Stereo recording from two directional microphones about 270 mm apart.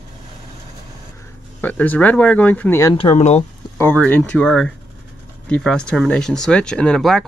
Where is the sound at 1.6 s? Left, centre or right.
Centre; by 3.5 s left.